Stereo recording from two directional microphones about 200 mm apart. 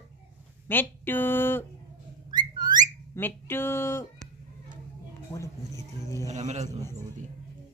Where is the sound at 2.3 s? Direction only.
20° right (ahead or behind).